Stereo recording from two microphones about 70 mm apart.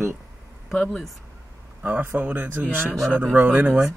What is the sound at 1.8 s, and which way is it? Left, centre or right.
Speech, right.